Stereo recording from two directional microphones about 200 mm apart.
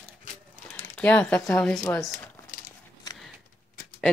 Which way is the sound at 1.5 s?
5° left (ahead or behind).